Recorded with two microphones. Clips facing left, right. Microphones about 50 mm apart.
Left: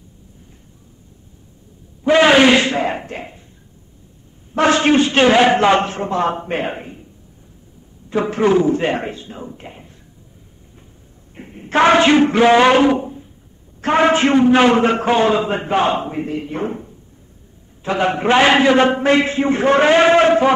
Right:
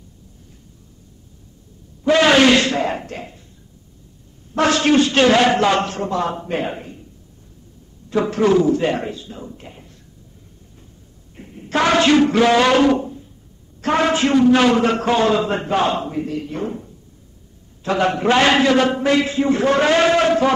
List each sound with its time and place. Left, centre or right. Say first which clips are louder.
2.0 s a sound: left 2 dB; centre
4.6 s a man's voice: left 2 dB; left
8.1 s a man's voice: left 1 dB; left
11.3 s a man's voice: left 4 dB; left